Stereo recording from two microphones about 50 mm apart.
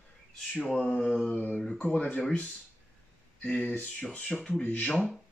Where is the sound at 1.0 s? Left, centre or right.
Centre.